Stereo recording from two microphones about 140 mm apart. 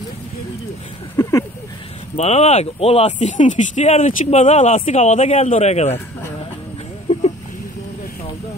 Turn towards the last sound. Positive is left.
turn(degrees=55)  # may be behind; listen again after turning